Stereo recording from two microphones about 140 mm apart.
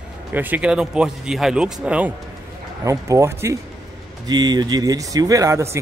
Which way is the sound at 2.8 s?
20° right (ahead or behind).